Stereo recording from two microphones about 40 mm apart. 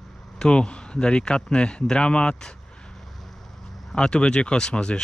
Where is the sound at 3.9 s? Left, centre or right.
Left.